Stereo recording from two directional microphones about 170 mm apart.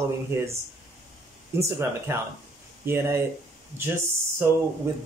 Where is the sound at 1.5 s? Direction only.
15° right (ahead or behind).